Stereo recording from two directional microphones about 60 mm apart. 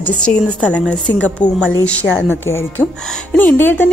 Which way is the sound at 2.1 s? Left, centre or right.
Left.